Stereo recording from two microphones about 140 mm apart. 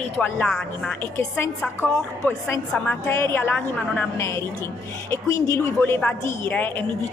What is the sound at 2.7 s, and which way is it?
A woman's voice, 15° left (ahead or behind).